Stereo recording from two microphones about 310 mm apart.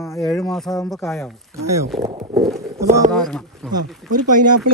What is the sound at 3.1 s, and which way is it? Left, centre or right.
Speech, centre.